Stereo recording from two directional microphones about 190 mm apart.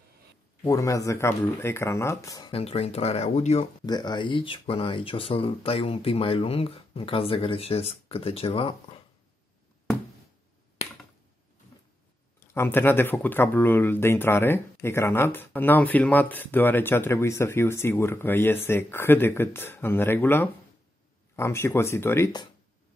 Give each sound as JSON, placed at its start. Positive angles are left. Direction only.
{"t": 0.7, "sound": "speech", "side_deg": 15}
{"t": 2.5, "sound": "speech", "side_deg": 30}
{"t": 3.8, "sound": "speech", "side_deg": 20}
{"t": 12.5, "sound": "speech", "side_deg": 10}